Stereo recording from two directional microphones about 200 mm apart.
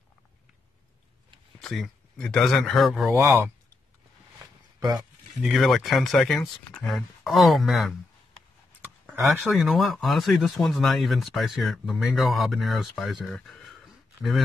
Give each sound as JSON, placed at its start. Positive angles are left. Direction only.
{"t": 1.6, "sound": "speech", "side_deg": 0}
{"t": 3.1, "sound": "speech", "side_deg": -15}
{"t": 4.7, "sound": "speech", "side_deg": -20}
{"t": 5.4, "sound": "speech", "side_deg": 0}